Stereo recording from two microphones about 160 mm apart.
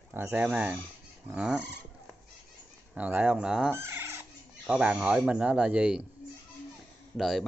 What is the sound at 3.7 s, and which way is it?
Chicken, 15° right (ahead or behind).